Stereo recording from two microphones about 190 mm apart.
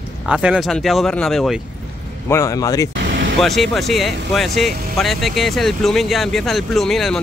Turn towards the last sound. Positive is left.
turn(degrees=0)  # may be behind; listen again after turning